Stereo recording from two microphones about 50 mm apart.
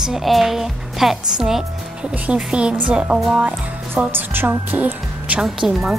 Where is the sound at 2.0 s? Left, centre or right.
Right.